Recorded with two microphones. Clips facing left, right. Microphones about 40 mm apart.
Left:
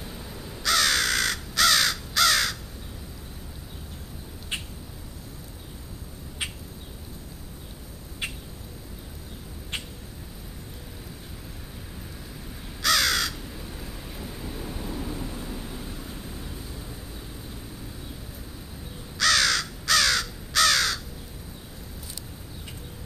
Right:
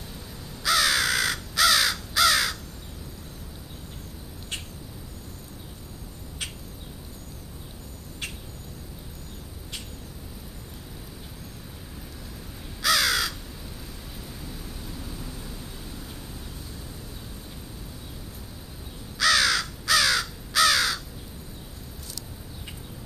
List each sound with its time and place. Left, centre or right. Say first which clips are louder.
0.1 s crow: left 2 dB; centre
0.6 s crow: right 1 dB; centre
4.5 s a sound: left 3 dB; centre
6.4 s a sound: left 3 dB; centre
8.2 s rodents: left 3 dB; centre
12.8 s crow: even; centre
13.5 s thunder: left 2 dB; centre
19.1 s crow: right 1 dB; centre